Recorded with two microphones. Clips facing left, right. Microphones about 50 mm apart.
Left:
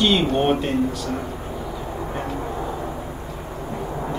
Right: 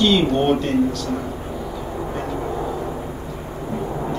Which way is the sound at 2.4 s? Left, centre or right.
Centre.